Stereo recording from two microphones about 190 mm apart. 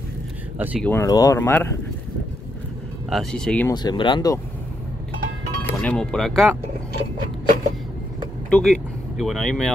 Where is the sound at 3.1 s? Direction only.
Centre (ahead or behind).